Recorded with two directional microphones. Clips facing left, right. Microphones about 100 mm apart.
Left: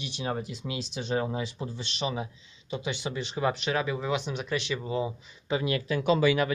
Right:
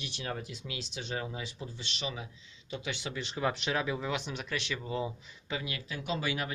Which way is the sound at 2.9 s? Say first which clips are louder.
Left 5 dB; 15° left (ahead or behind).